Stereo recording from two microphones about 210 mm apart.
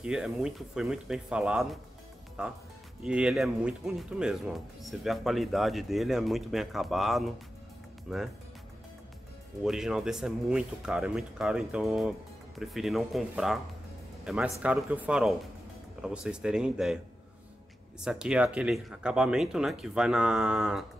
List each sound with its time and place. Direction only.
0.0 s speech: 5° right (ahead or behind)
9.6 s speech: centre (ahead or behind)
18.0 s speech: 5° right (ahead or behind)